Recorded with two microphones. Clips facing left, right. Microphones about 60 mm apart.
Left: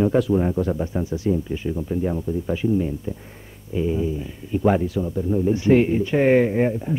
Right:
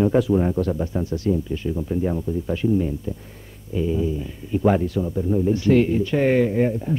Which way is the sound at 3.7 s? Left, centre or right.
Centre.